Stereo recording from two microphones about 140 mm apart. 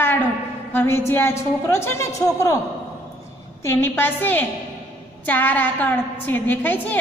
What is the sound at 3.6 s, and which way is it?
A woman's voice, 15° left (ahead or behind).